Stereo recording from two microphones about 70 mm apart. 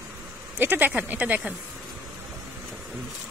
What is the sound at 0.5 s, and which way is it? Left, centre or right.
Speech, right.